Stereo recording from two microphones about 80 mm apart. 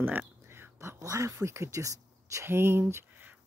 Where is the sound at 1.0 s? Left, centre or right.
Right.